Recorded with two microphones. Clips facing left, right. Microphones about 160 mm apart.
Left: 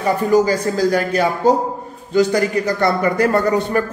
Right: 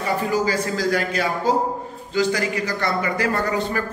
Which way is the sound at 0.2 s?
40° left (ahead or behind).